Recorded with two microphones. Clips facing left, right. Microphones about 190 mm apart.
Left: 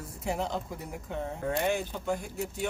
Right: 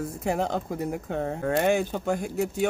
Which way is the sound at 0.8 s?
75° right (ahead or behind).